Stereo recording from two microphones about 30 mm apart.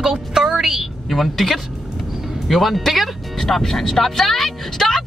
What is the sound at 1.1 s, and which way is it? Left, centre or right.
Speech, centre.